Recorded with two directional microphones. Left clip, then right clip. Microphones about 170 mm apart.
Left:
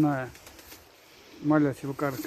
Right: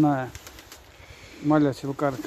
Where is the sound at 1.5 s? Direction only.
10° right (ahead or behind).